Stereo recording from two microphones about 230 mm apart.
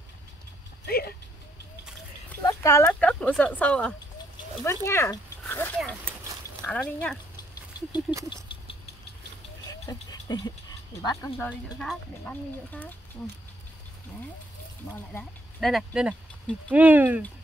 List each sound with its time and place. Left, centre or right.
0.8 s speech: left
2.2 s speech: centre
4.6 s a sound: centre
6.6 s speech: centre
9.7 s a sound: centre
11.0 s speech: centre
15.1 s speech: centre